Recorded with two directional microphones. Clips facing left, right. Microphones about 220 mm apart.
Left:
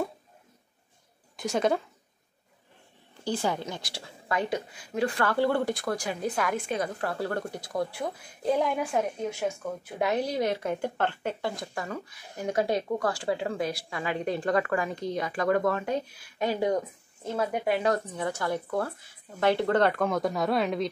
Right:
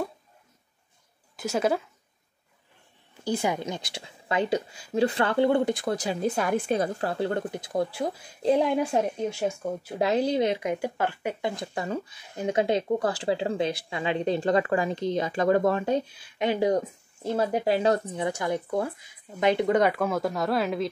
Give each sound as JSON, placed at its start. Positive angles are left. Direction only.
{"t": 1.3, "sound": "a woman's voice", "side_deg": -5}
{"t": 3.3, "sound": "speech", "side_deg": -15}
{"t": 11.6, "sound": "speech", "side_deg": -25}